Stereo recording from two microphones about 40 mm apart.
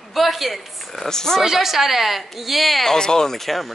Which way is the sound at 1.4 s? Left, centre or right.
Centre.